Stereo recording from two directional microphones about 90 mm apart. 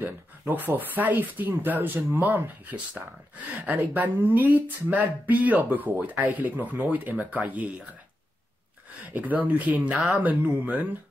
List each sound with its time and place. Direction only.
0.0 s speech: 20° right (ahead or behind)
9.1 s speech: 20° right (ahead or behind)
9.9 s speech: centre (ahead or behind)
10.2 s speech: 20° right (ahead or behind)